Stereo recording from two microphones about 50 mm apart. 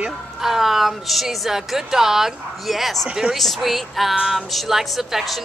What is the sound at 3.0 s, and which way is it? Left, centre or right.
Speech, centre.